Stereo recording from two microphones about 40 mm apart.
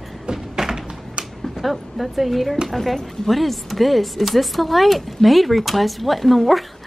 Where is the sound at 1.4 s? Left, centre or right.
Centre.